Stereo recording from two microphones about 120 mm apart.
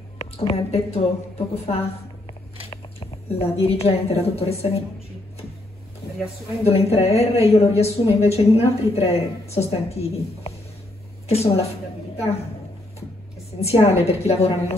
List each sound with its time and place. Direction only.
0.2 s a woman's voice: 55° left (ahead or behind)
6.9 s a woman's voice: 60° left (ahead or behind)
13.6 s a woman's voice: 60° left (ahead or behind)